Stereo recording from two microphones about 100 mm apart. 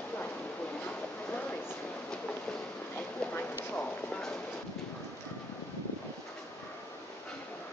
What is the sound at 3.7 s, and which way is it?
Clip-clop, 10° left (ahead or behind).